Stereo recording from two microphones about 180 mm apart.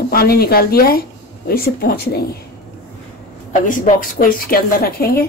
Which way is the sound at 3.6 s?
45° left (ahead or behind).